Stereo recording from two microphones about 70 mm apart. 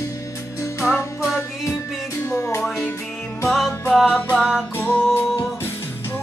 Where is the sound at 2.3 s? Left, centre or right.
Left.